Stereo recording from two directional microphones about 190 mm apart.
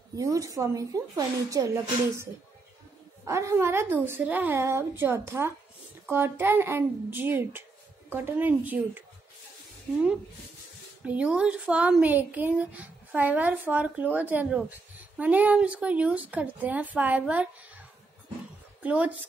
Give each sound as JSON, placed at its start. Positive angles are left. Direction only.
{"t": 0.1, "sound": "speech", "side_deg": -15}
{"t": 3.3, "sound": "speech", "side_deg": -15}
{"t": 11.1, "sound": "a woman's voice", "side_deg": -5}